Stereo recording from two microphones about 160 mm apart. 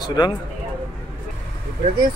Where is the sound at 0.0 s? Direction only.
25° left (ahead or behind).